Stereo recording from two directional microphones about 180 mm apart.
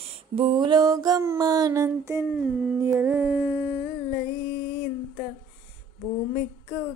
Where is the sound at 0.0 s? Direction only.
30° right (ahead or behind); by 2.2 s 15° right (ahead or behind).